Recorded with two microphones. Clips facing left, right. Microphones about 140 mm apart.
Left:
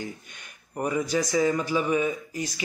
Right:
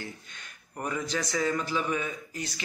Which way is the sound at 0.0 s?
15° left (ahead or behind).